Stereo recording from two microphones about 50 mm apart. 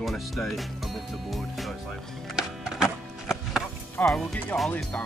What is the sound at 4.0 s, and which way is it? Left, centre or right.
Speech, left.